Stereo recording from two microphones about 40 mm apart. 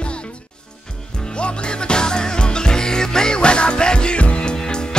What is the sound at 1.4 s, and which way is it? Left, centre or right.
Music, left.